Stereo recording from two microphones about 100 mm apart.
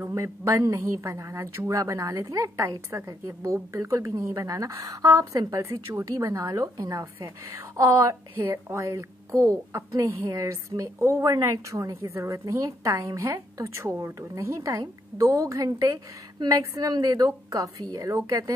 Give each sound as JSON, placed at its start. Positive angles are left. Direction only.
{"t": 0.1, "sound": "a woman's voice", "side_deg": -30}